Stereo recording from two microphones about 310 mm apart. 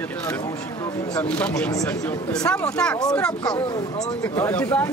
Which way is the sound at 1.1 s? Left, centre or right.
Centre.